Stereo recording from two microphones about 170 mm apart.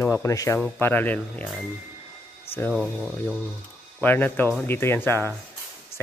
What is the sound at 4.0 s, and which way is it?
Speech, 10° left (ahead or behind).